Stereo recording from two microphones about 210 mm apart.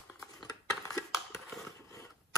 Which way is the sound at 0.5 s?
15° left (ahead or behind).